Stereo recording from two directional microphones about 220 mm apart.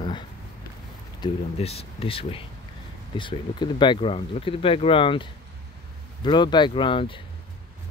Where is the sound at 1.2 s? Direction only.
25° left (ahead or behind).